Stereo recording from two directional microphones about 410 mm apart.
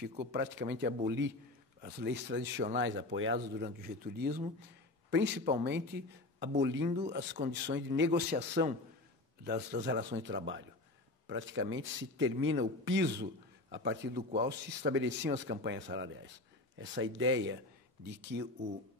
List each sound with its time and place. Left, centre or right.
0.0 s a man's voice: right
6.8 s speech: centre
7.2 s a man's voice: right